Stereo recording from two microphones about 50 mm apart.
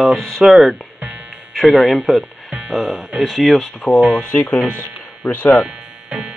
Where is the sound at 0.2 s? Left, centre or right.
Centre.